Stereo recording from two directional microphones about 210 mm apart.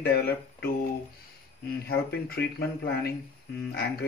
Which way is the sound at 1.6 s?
45° left (ahead or behind).